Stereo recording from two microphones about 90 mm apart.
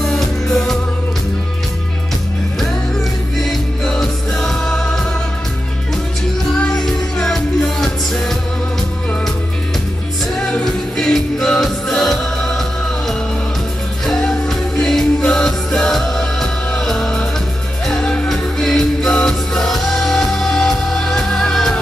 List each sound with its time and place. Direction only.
0.0 s music: 5° left (ahead or behind)
3.3 s music: 5° left (ahead or behind)
6.6 s music: 5° left (ahead or behind)
10.4 s music: 5° left (ahead or behind)
14.0 s music: 5° left (ahead or behind)